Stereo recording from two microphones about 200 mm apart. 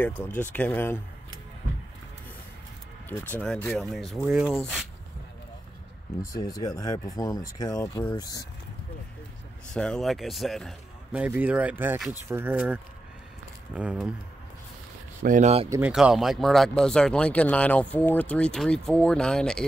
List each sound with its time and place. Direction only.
0.2 s speech: 10° left (ahead or behind)
3.3 s speech: 10° left (ahead or behind)
6.3 s speech: 20° left (ahead or behind)
9.8 s speech: 5° left (ahead or behind)
15.2 s speech: 35° right (ahead or behind)
15.7 s speech: 5° right (ahead or behind)